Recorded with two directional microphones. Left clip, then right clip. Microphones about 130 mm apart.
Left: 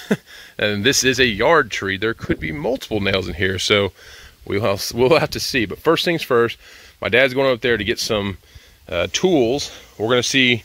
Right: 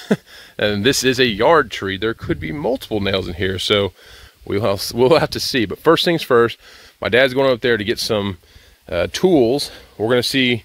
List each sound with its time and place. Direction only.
0.0 s speech: 35° right (ahead or behind)
4.5 s speech: 35° right (ahead or behind)
9.9 s speech: 30° right (ahead or behind)